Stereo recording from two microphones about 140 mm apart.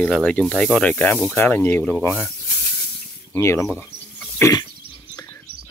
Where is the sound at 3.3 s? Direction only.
20° left (ahead or behind).